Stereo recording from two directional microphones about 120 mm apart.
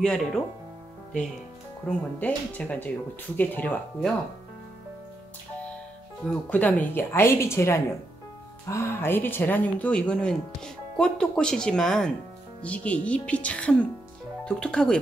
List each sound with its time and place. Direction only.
0.0 s speech: 5° left (ahead or behind)
1.9 s speech: 10° left (ahead or behind)
6.2 s speech: 15° left (ahead or behind)